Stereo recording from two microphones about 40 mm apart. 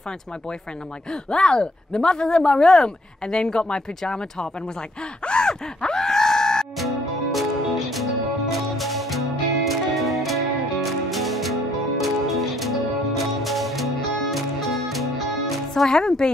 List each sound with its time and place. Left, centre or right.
1.3 s speech: left
5.2 s groan: left
6.8 s music: centre
15.7 s speech: centre